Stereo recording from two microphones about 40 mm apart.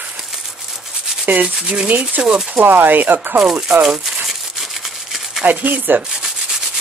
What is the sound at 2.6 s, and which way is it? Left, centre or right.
Speech, right.